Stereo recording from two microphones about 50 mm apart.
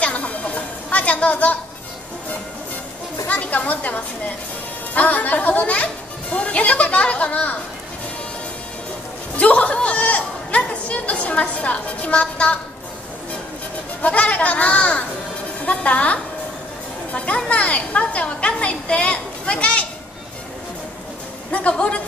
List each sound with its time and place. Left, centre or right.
0.0 s chatter: left
3.3 s a woman's voice: left
9.4 s speech: left
14.0 s speech: left
17.5 s speech: left
21.5 s speech: left